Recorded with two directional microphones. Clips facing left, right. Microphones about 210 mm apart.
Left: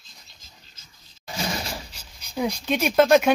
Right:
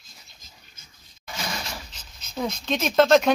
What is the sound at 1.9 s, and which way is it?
Dog, 10° left (ahead or behind).